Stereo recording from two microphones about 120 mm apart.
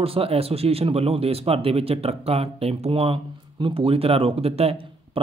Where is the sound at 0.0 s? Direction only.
55° right (ahead or behind).